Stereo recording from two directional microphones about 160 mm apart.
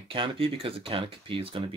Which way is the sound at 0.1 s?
35° right (ahead or behind).